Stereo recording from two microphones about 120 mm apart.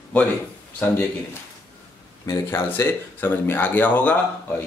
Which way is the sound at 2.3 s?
20° left (ahead or behind).